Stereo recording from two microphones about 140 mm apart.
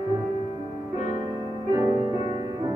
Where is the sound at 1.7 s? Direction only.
25° right (ahead or behind).